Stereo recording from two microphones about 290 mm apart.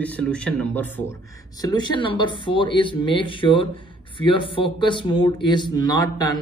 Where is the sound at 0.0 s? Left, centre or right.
Centre.